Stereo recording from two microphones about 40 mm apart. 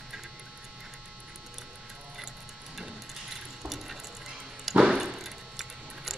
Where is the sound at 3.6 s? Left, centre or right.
Centre.